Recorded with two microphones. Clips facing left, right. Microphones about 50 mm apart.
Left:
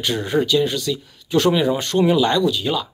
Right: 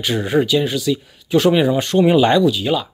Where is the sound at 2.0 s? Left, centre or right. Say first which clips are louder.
Right 4 dB; right.